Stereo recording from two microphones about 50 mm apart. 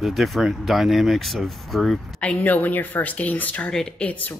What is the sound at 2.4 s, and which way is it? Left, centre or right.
Speech, left.